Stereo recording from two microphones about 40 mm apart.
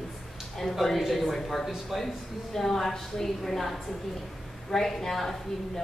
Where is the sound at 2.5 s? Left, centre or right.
Centre.